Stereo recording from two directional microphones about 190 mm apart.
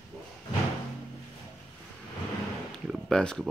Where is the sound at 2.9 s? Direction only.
5° left (ahead or behind).